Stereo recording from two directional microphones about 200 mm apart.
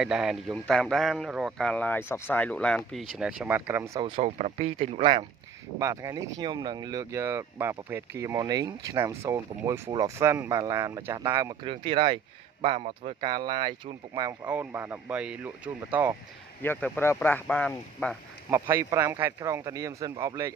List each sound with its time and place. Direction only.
0.0 s a man's voice: 5° right (ahead or behind)
4.1 s speech: 35° right (ahead or behind)
5.8 s speech: 15° right (ahead or behind)
11.7 s speech: 25° right (ahead or behind)
14.4 s speech: 10° right (ahead or behind)
16.6 s speech: 10° left (ahead or behind)
18.5 s speech: 15° right (ahead or behind)